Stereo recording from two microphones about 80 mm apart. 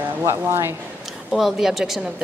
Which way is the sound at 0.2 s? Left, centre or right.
Right.